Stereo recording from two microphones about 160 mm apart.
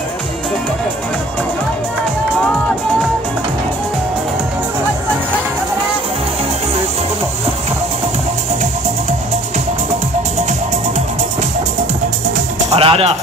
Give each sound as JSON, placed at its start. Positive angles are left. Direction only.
{"t": 12.6, "sound": "music", "side_deg": -35}